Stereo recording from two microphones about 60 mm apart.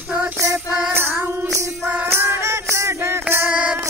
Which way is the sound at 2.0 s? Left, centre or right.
Right.